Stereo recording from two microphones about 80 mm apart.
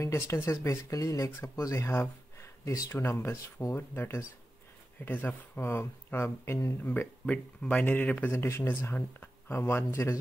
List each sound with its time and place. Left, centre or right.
0.0 s speech: left
3.0 s speech: left
6.9 s speech: left
8.3 s speech: left